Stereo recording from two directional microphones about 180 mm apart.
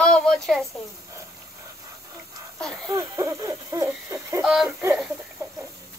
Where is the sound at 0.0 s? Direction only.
5° left (ahead or behind).